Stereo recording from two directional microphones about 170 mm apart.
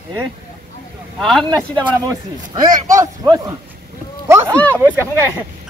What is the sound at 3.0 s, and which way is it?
Speech, 20° right (ahead or behind).